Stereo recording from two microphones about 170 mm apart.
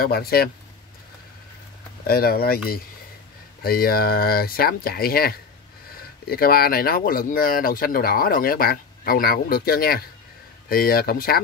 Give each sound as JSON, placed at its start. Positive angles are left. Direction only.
{"t": 0.0, "sound": "speech", "side_deg": 65}
{"t": 2.0, "sound": "speech", "side_deg": 60}